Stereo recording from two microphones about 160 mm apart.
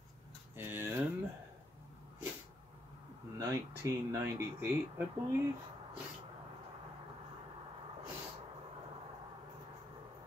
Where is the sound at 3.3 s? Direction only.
20° right (ahead or behind).